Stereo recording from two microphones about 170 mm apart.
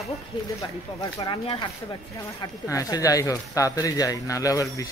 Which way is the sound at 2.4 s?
20° left (ahead or behind).